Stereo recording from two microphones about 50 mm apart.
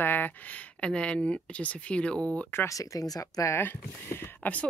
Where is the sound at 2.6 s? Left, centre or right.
Left.